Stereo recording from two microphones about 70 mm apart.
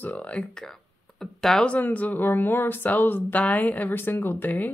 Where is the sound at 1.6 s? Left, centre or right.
Left.